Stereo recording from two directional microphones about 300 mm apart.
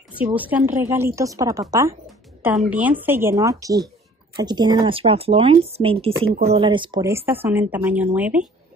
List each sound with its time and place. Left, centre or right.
0.4 s speech: centre